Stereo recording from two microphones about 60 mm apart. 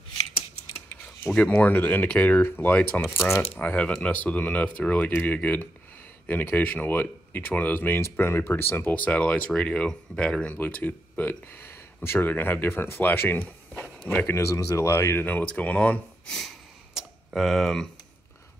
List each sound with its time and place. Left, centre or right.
1.3 s speech: left
2.4 s speech: left
8.0 s speech: left; by 10.5 s centre
10.5 s speech: left
14.2 s speech: left
14.5 s speech: left
14.9 s speech: left
15.2 s speech: left
16.3 s a sound: centre
16.9 s tick-tock: centre